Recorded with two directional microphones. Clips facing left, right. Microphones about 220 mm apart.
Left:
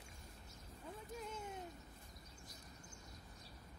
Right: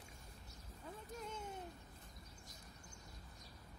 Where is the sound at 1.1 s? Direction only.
5° left (ahead or behind).